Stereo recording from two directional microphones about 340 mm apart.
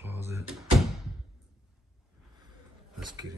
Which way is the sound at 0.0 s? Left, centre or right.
Centre.